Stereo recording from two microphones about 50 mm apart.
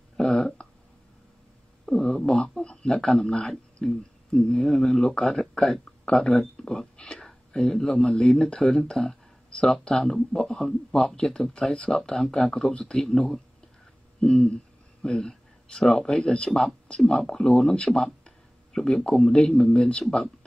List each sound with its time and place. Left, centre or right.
0.2 s a sound: centre
1.9 s speech: centre
11.9 s speech: centre
14.2 s a sound: centre
15.8 s speech: centre
16.1 s speech: centre
16.4 s speech: centre
16.8 s speech: left
17.1 s speech: centre